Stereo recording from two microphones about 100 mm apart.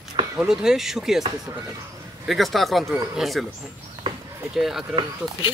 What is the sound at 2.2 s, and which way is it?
A man's voice, centre (ahead or behind).